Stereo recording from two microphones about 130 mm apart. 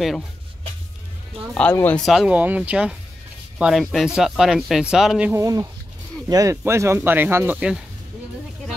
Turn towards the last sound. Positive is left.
turn(degrees=-10)  # may be behind; listen again after turning